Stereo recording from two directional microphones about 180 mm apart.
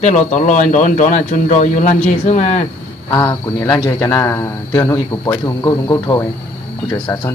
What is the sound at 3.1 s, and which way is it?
A man's voice, 15° left (ahead or behind).